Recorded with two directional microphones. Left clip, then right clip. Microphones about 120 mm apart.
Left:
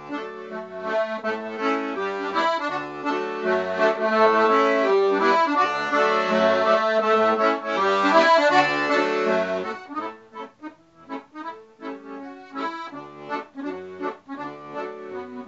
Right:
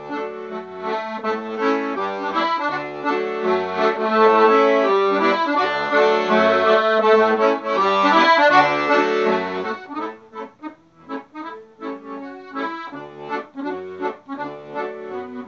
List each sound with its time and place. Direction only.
0.1 s accordion: 15° right (ahead or behind)
11.8 s accordion: 15° right (ahead or behind)